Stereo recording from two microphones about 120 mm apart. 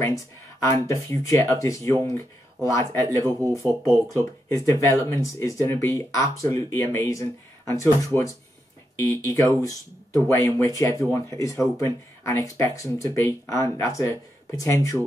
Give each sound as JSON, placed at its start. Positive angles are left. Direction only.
{"t": 0.7, "sound": "speech", "side_deg": 25}